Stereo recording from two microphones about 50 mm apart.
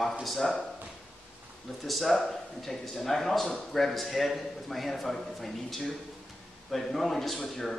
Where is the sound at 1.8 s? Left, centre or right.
Centre.